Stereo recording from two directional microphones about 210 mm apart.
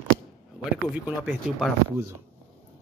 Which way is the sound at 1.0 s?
5° right (ahead or behind).